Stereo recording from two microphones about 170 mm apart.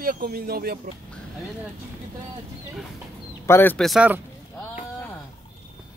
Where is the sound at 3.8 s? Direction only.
5° right (ahead or behind).